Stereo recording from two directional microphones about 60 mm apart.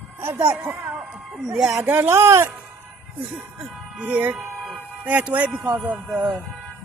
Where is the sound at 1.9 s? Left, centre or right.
Right.